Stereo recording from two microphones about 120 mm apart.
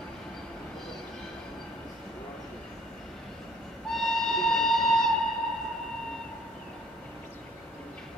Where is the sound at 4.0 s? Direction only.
5° left (ahead or behind).